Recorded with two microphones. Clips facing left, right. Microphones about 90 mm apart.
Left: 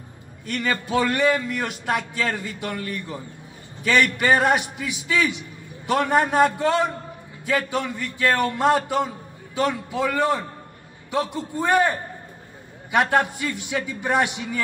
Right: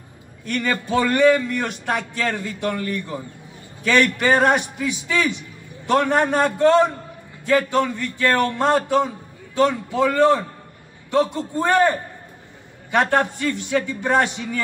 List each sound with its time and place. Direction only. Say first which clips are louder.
0.5 s a man's voice: right 2 dB; 5° left (ahead or behind)
12.9 s a man's voice: right 1 dB; 10° left (ahead or behind)